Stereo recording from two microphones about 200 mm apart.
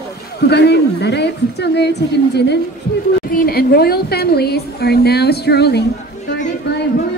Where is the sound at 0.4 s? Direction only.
55° left (ahead or behind).